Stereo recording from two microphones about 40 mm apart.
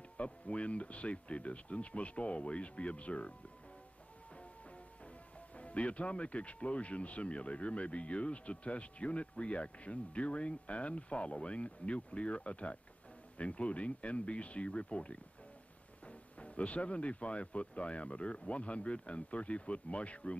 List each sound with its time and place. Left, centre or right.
0.2 s speech: left
5.6 s speech: left